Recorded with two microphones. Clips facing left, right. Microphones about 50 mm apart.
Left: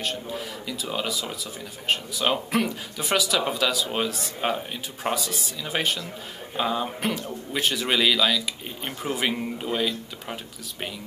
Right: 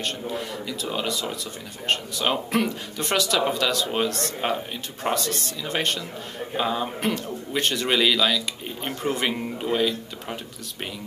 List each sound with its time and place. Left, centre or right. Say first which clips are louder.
0.0 s speech: right 1 dB; centre